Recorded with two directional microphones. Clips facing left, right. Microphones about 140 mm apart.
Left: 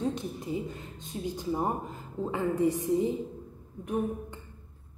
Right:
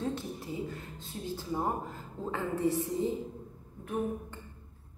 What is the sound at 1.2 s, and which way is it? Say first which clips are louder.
A woman's voice: left 3 dB; 15° left (ahead or behind).